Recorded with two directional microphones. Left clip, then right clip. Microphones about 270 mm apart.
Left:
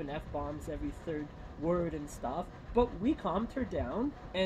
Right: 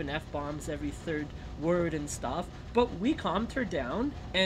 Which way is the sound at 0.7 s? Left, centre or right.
Centre.